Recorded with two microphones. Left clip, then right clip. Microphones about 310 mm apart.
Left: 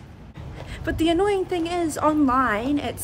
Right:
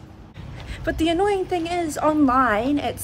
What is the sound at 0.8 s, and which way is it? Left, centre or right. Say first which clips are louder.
A woman's voice: right 1 dB; centre.